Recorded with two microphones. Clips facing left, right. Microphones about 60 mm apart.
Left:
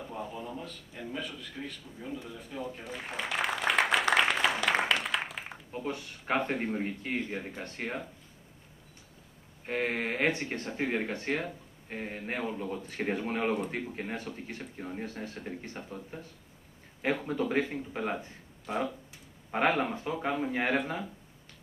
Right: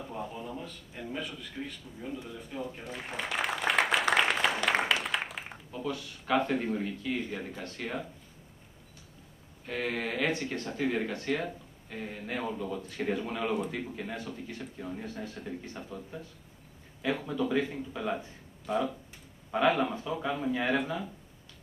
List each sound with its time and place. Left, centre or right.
0.0 s a man's voice: centre
5.7 s speech: left
9.7 s speech: left
17.3 s speech: left
19.8 s speech: left